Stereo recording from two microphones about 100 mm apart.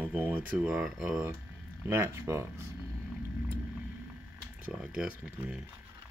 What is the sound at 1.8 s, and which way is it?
Speech, 25° right (ahead or behind).